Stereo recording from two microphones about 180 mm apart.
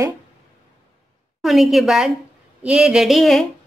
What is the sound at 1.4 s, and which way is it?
A woman's voice, centre (ahead or behind).